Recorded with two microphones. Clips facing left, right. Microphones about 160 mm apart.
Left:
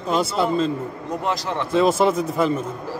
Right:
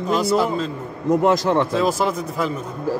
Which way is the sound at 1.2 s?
50° right (ahead or behind).